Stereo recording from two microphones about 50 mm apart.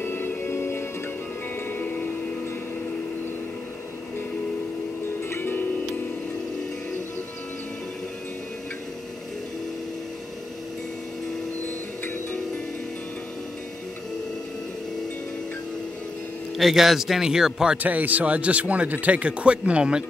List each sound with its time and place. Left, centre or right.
0.0 s music: left
1.7 s music: left
5.3 s music: left
16.5 s speech: centre
17.8 s a man's voice: right